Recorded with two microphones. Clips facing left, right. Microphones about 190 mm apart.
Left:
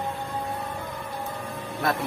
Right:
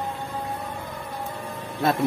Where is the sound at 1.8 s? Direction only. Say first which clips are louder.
Right 4 dB; 25° right (ahead or behind).